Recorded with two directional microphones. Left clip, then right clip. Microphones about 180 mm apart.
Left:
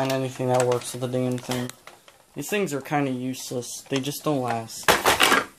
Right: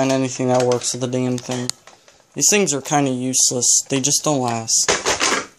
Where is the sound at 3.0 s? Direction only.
45° right (ahead or behind).